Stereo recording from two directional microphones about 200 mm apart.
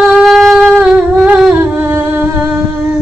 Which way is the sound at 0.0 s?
Centre (ahead or behind).